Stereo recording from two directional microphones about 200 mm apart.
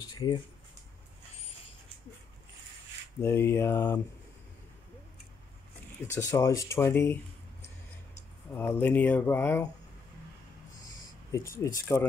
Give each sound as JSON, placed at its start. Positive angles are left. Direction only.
{"t": 0.1, "sound": "a sound", "side_deg": 20}
{"t": 3.2, "sound": "speech", "side_deg": 15}
{"t": 6.1, "sound": "speech", "side_deg": 15}
{"t": 8.5, "sound": "speech", "side_deg": 10}
{"t": 11.3, "sound": "speech", "side_deg": 15}